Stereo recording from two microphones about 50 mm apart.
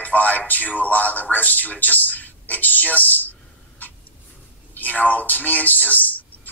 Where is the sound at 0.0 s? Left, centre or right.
Left.